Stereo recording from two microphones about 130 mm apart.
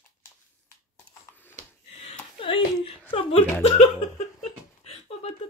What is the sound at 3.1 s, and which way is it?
Whimper, 50° left (ahead or behind).